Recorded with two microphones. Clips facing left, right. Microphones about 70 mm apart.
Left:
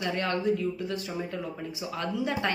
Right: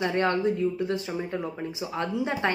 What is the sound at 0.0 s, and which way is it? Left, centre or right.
A woman's voice, right.